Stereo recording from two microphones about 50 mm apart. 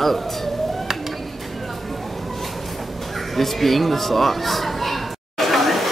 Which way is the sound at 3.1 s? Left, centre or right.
Centre.